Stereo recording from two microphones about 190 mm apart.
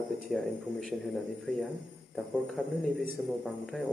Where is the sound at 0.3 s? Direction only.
5° left (ahead or behind).